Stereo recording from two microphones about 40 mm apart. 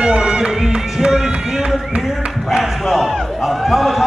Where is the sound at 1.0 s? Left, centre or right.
Centre.